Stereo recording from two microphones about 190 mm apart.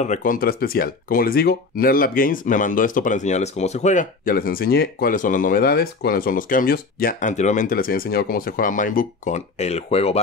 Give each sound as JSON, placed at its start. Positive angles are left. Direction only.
{"t": 0.0, "sound": "speech", "side_deg": 40}